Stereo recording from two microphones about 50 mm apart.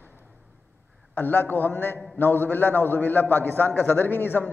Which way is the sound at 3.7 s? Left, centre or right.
Left.